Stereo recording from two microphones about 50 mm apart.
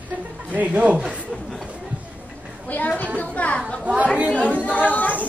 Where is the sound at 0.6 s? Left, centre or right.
Right.